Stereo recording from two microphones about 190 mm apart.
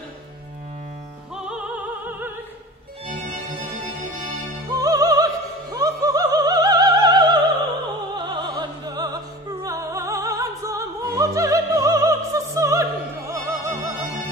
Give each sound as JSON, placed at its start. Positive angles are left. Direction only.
{"t": 3.1, "sound": "music", "side_deg": -40}
{"t": 4.6, "sound": "opera", "side_deg": -20}
{"t": 13.3, "sound": "music", "side_deg": -15}